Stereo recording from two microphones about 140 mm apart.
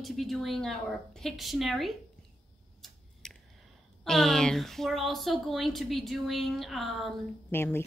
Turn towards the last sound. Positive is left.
turn(degrees=15)  # may be behind; listen again after turning